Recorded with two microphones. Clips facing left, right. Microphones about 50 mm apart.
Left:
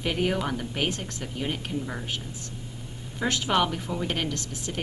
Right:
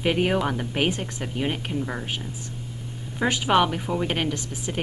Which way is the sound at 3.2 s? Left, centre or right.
Centre.